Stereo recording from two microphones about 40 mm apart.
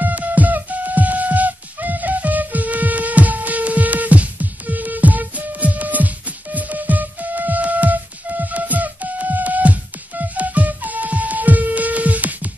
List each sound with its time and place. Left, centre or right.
0.0 s music: right